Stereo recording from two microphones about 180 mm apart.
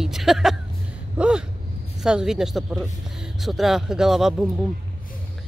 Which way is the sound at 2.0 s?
5° right (ahead or behind).